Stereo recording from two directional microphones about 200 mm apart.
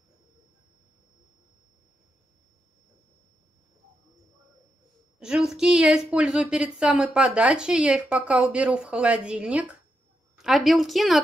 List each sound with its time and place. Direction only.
5.2 s a woman's voice: 5° right (ahead or behind)